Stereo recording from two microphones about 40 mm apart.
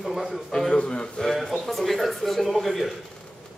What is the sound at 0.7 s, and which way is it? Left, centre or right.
Speech, left.